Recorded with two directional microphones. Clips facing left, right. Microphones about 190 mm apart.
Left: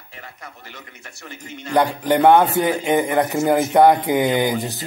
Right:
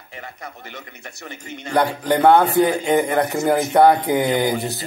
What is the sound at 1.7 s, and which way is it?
Speech, 15° left (ahead or behind).